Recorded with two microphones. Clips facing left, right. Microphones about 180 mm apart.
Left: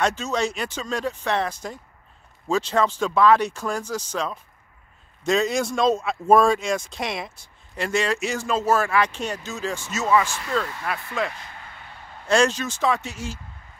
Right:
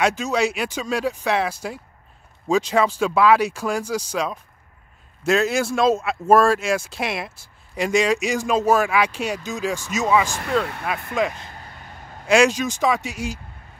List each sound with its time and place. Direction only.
0.0 s speech: 10° right (ahead or behind)
10.6 s speech: 60° right (ahead or behind)
11.1 s speech: 20° right (ahead or behind)
11.5 s vehicle: 40° right (ahead or behind)
12.3 s speech: 10° right (ahead or behind)